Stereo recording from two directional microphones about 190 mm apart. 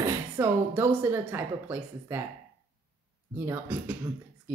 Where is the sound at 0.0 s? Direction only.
15° right (ahead or behind).